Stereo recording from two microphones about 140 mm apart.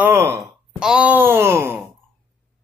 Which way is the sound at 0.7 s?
5° right (ahead or behind).